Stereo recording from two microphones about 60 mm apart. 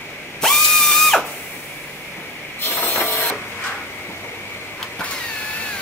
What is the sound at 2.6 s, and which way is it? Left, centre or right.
Ratchet, left.